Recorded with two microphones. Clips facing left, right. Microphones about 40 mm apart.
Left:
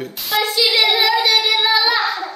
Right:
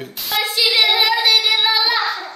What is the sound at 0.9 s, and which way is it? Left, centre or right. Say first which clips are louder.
Singing: even; centre.